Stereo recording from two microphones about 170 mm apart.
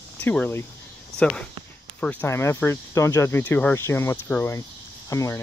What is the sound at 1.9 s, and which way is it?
Speech, 10° left (ahead or behind).